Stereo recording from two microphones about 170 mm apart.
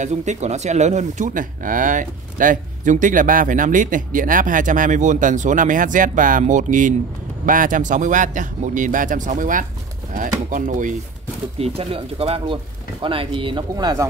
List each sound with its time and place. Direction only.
0.0 s speech: 45° right (ahead or behind)
11.6 s speech: 35° right (ahead or behind)